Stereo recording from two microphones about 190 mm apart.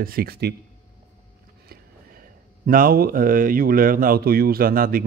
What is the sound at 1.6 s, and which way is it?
Speech, 50° right (ahead or behind).